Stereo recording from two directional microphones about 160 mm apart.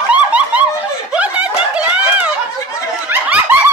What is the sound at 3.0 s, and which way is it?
Snicker, 10° right (ahead or behind).